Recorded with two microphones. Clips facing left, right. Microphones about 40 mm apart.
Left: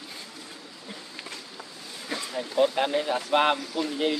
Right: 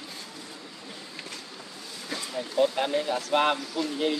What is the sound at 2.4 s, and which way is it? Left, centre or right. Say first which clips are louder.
Speech: left 1 dB; centre.